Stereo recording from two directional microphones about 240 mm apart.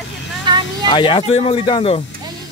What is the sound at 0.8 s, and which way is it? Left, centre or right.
Speech, left.